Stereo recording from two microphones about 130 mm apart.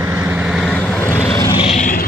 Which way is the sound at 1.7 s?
75° left (ahead or behind).